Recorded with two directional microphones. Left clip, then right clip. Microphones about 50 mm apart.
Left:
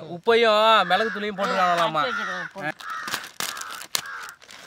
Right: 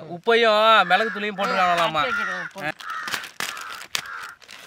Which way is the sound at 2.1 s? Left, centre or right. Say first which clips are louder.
Right 2 dB; centre.